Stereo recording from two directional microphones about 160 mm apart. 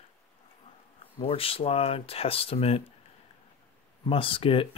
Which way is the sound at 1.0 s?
35° left (ahead or behind).